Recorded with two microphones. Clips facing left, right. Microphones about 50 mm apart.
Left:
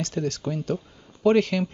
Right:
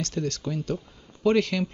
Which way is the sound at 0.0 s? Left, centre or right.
Centre.